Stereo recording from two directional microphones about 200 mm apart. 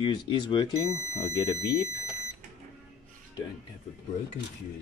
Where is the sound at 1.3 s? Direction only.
15° left (ahead or behind).